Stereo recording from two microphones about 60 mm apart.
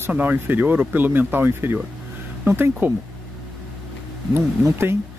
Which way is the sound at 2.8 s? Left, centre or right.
Right.